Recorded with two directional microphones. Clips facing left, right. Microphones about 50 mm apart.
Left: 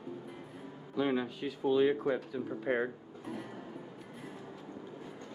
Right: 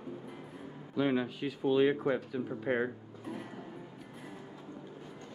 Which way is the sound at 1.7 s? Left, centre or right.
Right.